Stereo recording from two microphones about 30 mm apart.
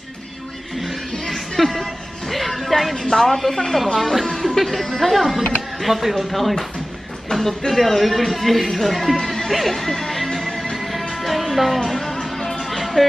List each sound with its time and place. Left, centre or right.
1.2 s music: centre
3.3 s speech: centre
9.2 s music: centre
10.9 s music: centre